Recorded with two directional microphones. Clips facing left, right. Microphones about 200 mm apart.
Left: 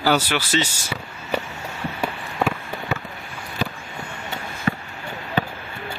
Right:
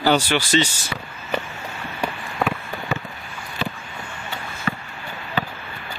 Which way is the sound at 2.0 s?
5° left (ahead or behind).